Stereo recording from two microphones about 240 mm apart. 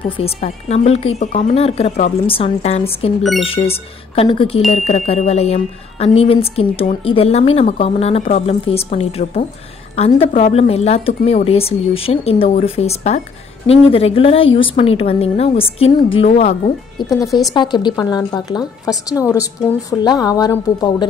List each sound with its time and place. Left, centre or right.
0.2 s speech: left
17.0 s speech: centre
17.6 s a woman's voice: centre